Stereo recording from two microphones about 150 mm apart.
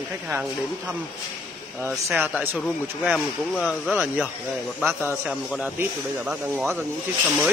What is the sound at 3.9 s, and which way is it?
Speech, 5° right (ahead or behind).